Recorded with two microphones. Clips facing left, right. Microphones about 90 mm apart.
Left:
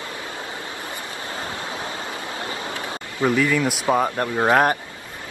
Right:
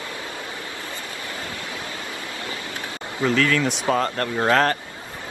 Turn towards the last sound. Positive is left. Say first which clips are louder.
# left 2 dB
turn(degrees=15)  # may be behind; listen again after turning